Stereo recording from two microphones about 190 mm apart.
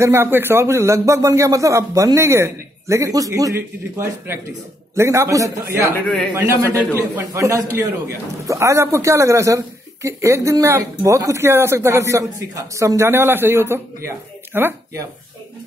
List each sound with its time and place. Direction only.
0.0 s speech: 10° right (ahead or behind)
4.9 s speech: 15° right (ahead or behind)